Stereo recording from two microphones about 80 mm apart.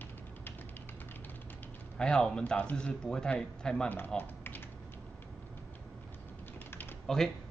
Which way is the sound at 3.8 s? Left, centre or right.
Left.